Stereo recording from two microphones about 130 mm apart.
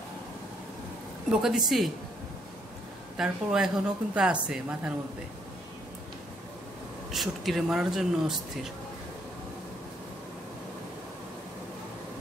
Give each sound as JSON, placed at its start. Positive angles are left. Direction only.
{"t": 1.3, "sound": "speech", "side_deg": -5}
{"t": 3.2, "sound": "a woman's voice", "side_deg": -5}
{"t": 7.1, "sound": "speech", "side_deg": 0}